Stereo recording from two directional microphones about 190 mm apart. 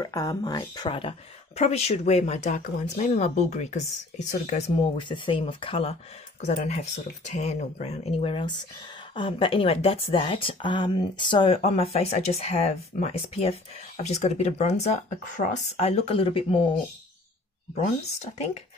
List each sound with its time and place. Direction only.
0.0 s a woman's voice: 15° left (ahead or behind); by 4.6 s 40° left (ahead or behind)
5.0 s a woman's voice: 25° left (ahead or behind)
18.2 s a woman's voice: 35° left (ahead or behind)